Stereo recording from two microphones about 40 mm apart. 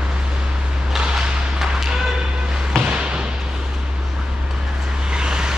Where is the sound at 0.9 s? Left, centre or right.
Centre.